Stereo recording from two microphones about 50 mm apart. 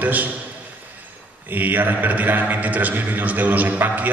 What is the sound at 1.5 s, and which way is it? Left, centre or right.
A man's voice, right.